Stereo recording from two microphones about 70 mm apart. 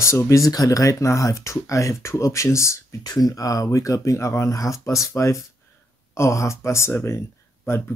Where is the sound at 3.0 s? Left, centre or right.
Left.